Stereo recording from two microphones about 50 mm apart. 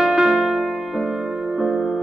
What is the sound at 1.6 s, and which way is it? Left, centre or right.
Music, centre.